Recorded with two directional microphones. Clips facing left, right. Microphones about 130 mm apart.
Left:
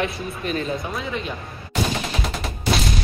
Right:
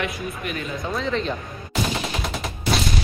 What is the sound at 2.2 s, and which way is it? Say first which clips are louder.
Gunshot: left 1 dB; centre (ahead or behind).